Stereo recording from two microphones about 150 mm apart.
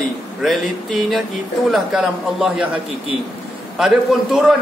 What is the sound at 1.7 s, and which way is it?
A man's voice, 5° right (ahead or behind).